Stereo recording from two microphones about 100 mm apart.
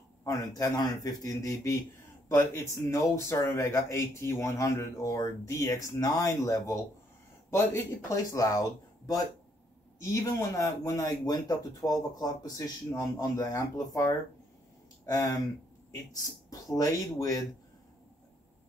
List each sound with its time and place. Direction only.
0.2 s speech: 35° left (ahead or behind)
10.6 s speech: 35° left (ahead or behind)
16.2 s speech: 35° left (ahead or behind)